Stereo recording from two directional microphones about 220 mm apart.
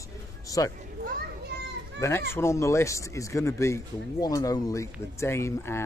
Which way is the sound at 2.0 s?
10° left (ahead or behind).